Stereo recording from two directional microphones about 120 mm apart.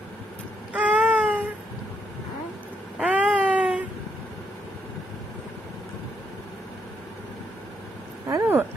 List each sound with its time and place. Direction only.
0.7 s baby cry: 10° right (ahead or behind)
3.0 s baby cry: 10° right (ahead or behind)
8.3 s a sound: 20° right (ahead or behind)